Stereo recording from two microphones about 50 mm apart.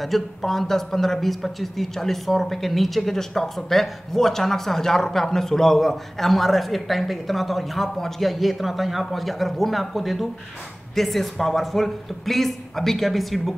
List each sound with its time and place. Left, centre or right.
0.0 s speech: centre